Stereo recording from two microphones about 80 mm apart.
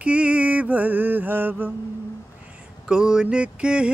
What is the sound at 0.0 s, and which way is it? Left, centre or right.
Mantra, centre.